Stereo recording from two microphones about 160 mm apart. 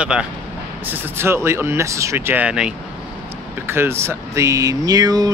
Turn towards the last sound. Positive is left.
turn(degrees=-25)  # may be behind; listen again after turning